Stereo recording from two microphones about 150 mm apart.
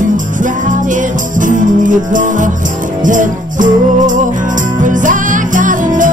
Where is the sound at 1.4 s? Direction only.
60° right (ahead or behind).